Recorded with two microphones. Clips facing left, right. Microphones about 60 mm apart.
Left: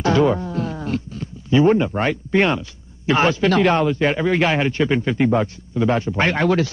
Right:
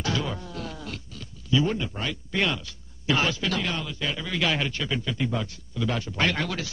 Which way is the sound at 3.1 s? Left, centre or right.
Left.